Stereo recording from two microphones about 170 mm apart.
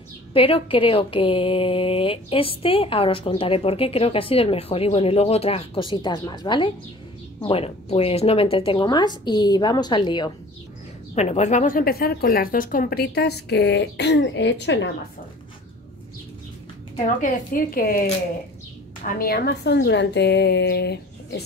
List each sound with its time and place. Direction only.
0.3 s a woman's voice: 35° left (ahead or behind)
11.1 s speech: 40° left (ahead or behind); by 14.9 s 90° left
17.2 s speech: 55° left (ahead or behind)
19.0 s a woman's voice: 60° left (ahead or behind); by 21.4 s 75° left (ahead or behind)